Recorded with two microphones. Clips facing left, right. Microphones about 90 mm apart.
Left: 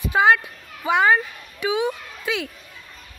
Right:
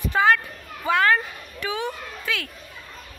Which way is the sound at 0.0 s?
15° left (ahead or behind).